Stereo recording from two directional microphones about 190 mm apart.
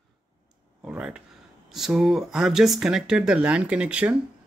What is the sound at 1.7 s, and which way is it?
Speech, centre (ahead or behind).